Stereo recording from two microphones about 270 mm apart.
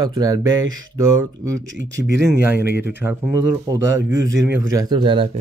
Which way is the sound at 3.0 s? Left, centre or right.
Centre.